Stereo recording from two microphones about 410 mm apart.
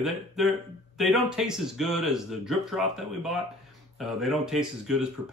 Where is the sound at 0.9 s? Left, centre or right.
Centre.